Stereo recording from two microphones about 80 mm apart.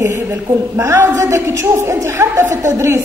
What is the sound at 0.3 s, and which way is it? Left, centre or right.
A woman's voice, right.